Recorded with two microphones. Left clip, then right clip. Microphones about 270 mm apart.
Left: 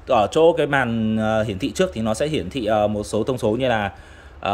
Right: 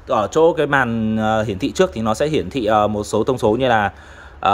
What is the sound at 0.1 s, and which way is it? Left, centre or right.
Speech, centre.